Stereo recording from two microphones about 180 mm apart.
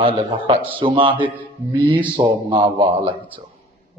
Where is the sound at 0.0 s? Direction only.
30° right (ahead or behind).